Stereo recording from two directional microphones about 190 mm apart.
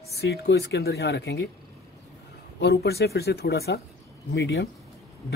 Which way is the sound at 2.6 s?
60° left (ahead or behind).